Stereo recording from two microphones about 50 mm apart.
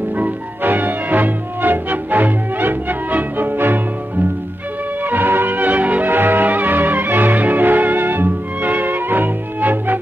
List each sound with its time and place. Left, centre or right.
0.2 s music: right
5.1 s music: right